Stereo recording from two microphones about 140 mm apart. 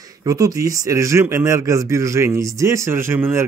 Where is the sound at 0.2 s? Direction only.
25° right (ahead or behind).